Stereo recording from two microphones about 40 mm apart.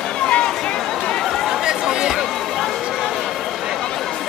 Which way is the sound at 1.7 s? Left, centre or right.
Centre.